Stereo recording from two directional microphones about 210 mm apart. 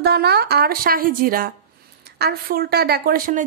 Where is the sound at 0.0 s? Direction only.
50° right (ahead or behind).